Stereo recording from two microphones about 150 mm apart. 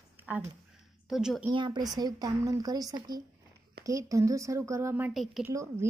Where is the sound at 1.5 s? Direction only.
30° right (ahead or behind); by 5.1 s 15° right (ahead or behind).